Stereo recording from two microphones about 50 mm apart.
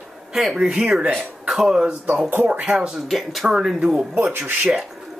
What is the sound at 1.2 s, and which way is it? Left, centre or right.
Speech, centre.